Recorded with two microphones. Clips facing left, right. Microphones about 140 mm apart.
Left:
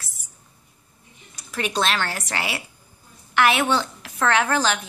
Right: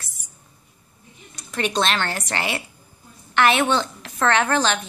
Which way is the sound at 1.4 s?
5° left (ahead or behind).